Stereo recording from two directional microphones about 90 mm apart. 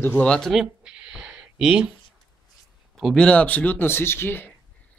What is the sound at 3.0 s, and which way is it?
Speech, 10° left (ahead or behind).